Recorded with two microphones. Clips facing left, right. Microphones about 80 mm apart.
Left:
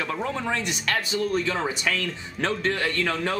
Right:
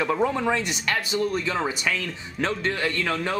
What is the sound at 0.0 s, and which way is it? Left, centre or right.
A man's voice, centre.